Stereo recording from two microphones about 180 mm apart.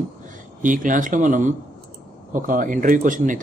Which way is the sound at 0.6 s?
45° right (ahead or behind).